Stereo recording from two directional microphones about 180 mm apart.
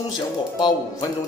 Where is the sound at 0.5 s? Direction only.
25° left (ahead or behind).